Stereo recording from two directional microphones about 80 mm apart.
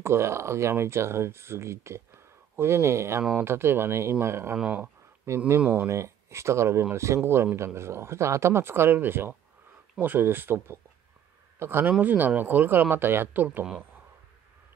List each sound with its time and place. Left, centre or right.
0.0 s speech: right
4.6 s speech: centre
4.8 s a sound: right
5.9 s speech: right